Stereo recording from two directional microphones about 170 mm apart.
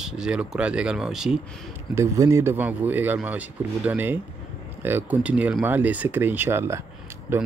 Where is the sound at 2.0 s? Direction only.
15° right (ahead or behind).